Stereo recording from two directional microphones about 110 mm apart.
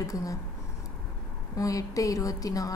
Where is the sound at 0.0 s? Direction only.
30° left (ahead or behind).